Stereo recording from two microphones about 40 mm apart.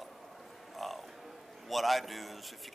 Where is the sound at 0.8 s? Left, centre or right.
Centre.